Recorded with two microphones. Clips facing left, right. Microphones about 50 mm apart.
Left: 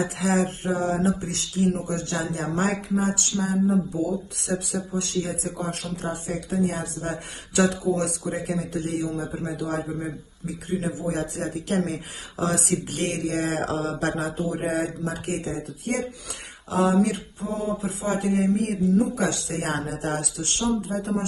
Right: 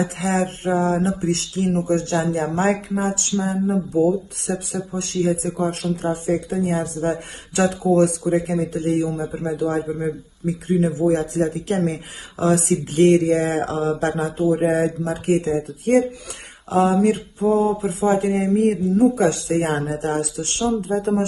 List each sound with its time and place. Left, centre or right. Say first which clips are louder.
0.3 s speech: right 3 dB; right
9.8 s speech: right 6 dB; centre
10.9 s speech: right 8 dB; right
13.7 s mantra: right 5 dB; centre
14.0 s speech: right 6 dB; right
15.2 s speech: right 9 dB; right